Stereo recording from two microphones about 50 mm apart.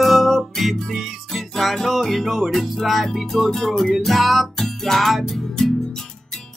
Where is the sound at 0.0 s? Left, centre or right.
Centre.